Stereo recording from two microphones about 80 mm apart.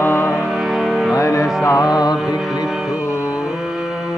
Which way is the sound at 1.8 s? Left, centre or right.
Left.